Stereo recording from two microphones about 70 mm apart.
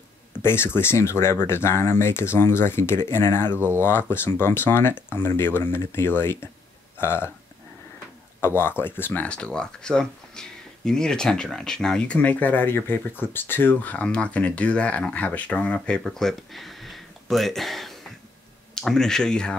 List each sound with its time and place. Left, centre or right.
0.4 s speech: left
3.5 s speech: right
3.8 s speech: left
8.4 s speech: left
9.3 s speech: centre
12.2 s speech: left
14.0 s speech: centre
16.0 s speech: centre